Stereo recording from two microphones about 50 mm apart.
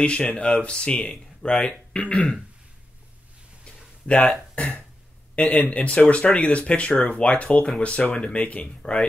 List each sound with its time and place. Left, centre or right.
0.0 s speech: left
3.6 s a sound: left
4.6 s speech: left